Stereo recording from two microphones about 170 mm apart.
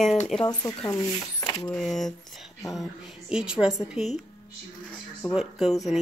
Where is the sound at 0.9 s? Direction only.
20° left (ahead or behind).